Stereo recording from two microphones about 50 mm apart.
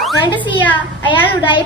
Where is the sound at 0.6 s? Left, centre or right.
Left.